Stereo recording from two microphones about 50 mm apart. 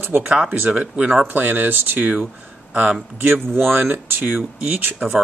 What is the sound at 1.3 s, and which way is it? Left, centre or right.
A man's voice, right.